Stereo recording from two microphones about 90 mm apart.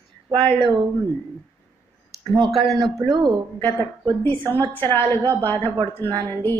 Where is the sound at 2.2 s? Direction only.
65° right (ahead or behind).